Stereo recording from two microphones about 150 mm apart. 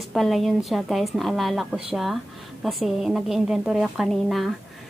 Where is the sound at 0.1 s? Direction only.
Centre (ahead or behind).